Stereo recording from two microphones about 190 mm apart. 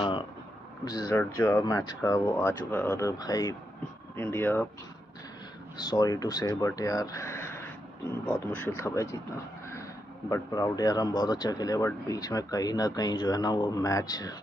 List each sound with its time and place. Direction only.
0.8 s speech: 20° left (ahead or behind)
5.9 s speech: 20° left (ahead or behind)
10.3 s speech: 20° left (ahead or behind)